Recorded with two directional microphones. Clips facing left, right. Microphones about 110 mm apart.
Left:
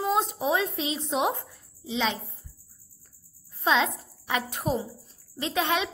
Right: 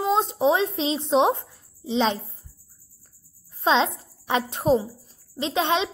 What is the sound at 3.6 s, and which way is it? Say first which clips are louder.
A woman's voice: right 3 dB; 25° right (ahead or behind).